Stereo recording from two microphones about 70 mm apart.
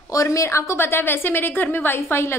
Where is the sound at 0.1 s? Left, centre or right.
Left.